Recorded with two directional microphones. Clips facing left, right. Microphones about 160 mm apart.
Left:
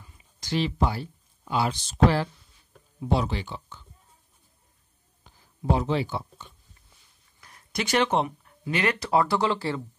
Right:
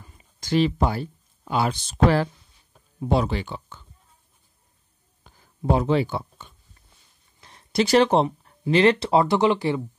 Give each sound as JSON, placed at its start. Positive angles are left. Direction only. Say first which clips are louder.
{"t": 0.0, "sound": "speech", "louder": "right 3 dB", "side_deg": -50}
{"t": 5.2, "sound": "a sound", "louder": "right 4 dB", "side_deg": -50}
{"t": 7.3, "sound": "speech", "louder": "right 9 dB", "side_deg": -25}